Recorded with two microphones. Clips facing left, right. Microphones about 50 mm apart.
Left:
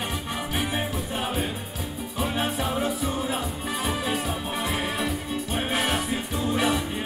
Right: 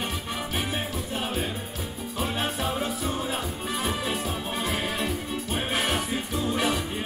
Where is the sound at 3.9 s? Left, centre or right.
Left.